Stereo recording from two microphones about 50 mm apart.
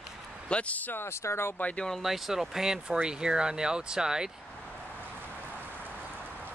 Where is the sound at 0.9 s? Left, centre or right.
Left.